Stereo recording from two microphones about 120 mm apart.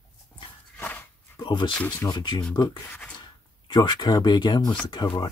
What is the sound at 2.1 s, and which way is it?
Speech, 40° left (ahead or behind).